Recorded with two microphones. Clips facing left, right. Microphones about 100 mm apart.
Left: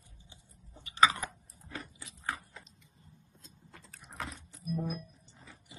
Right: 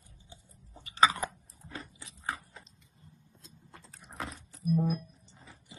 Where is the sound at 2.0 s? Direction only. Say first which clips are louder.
Right 1 dB; 25° right (ahead or behind).